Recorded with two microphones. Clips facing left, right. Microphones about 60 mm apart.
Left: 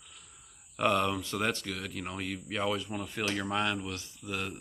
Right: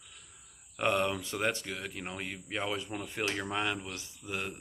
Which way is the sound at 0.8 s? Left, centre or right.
Centre.